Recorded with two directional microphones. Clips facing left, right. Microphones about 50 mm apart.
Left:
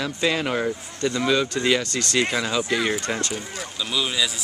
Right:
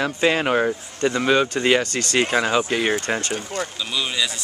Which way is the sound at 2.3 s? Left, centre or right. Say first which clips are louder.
Right 4 dB; right.